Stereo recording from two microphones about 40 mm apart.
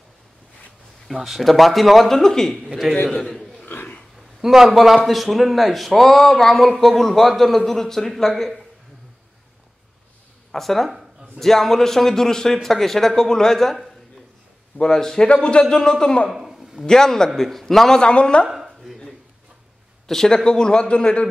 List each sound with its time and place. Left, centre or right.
1.0 s a man's voice: centre
2.5 s a man's voice: centre
3.6 s a sound: left
4.4 s a man's voice: centre
10.5 s speech: centre
14.8 s speech: centre
15.2 s speech: left
15.7 s speech: centre
16.3 s a sound: centre
16.8 s speech: centre
18.0 s speech: left
20.1 s speech: centre; by 21.3 s left